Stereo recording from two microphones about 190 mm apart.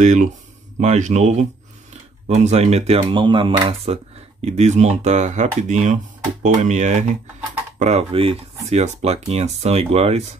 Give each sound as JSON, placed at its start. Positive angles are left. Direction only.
{"t": 0.0, "sound": "speech", "side_deg": -40}